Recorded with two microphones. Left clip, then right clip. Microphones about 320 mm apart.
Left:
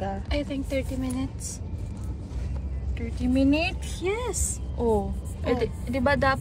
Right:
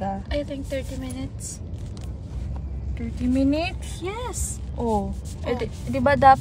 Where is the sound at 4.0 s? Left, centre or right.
Centre.